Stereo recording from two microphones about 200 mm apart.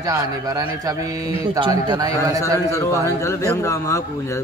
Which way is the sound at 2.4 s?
15° left (ahead or behind).